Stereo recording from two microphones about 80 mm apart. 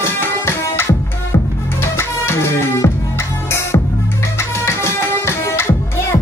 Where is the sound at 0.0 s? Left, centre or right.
Left.